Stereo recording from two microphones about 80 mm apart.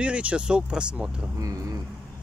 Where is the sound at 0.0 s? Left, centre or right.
Centre.